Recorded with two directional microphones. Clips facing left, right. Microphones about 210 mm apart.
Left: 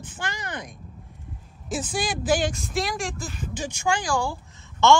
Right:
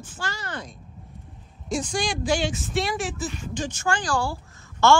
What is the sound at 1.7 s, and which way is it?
Speech, 5° left (ahead or behind).